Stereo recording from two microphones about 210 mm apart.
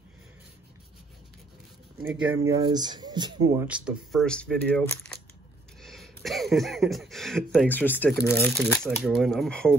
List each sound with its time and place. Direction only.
2.4 s speech: 20° right (ahead or behind); by 9.8 s 5° left (ahead or behind)